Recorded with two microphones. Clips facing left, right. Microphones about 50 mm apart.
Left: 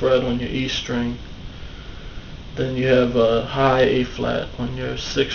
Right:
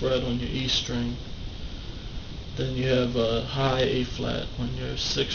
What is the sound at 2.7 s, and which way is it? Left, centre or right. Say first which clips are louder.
Speech: left 8 dB; left.